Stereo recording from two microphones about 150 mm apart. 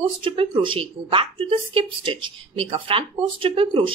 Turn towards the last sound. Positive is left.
turn(degrees=-35)  # may be behind; listen again after turning